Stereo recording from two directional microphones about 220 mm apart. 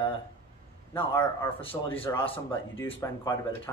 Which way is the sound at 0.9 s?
10° left (ahead or behind).